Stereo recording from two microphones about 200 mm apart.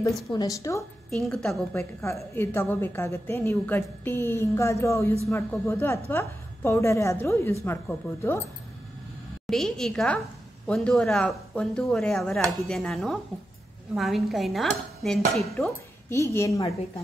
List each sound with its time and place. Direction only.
0.3 s a woman's voice: 20° left (ahead or behind)
1.1 s a woman's voice: centre (ahead or behind)
9.5 s speech: centre (ahead or behind)
16.1 s a woman's voice: 15° left (ahead or behind)